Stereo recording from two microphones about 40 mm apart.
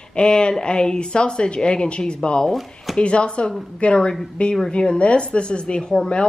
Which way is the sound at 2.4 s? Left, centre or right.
Centre.